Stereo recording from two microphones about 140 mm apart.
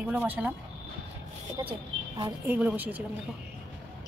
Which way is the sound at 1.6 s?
30° right (ahead or behind).